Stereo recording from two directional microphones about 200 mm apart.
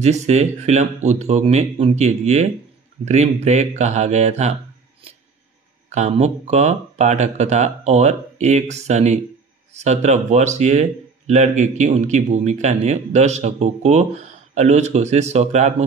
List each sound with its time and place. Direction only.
0.0 s speech: 35° right (ahead or behind)
5.9 s speech: 35° right (ahead or behind)